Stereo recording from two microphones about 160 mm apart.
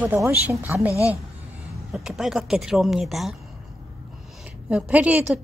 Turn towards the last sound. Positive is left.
turn(degrees=-10)  # may be behind; listen again after turning